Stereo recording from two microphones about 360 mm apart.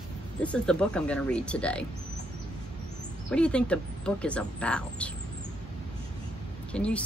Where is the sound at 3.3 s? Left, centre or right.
Centre.